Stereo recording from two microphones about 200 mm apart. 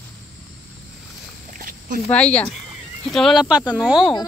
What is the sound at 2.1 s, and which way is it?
Speech, 5° left (ahead or behind).